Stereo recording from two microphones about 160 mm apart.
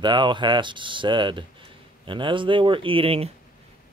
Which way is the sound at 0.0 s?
30° right (ahead or behind).